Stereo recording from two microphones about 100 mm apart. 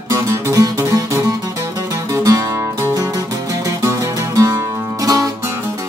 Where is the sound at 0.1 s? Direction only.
30° right (ahead or behind).